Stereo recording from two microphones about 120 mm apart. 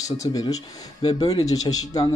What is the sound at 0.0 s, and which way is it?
Speech, 30° left (ahead or behind).